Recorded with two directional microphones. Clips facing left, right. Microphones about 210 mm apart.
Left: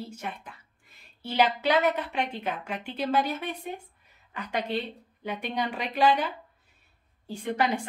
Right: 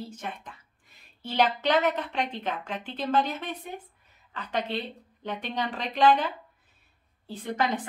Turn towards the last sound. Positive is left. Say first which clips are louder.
# left 1 dB
turn(degrees=10)  # may be behind; listen again after turning